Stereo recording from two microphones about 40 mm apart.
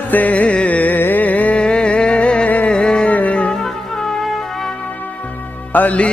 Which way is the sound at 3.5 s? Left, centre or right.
Centre.